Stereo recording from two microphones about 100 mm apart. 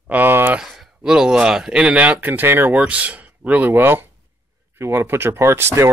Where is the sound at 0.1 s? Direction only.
20° right (ahead or behind).